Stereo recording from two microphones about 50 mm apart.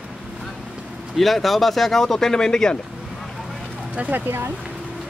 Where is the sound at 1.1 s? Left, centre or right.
Centre.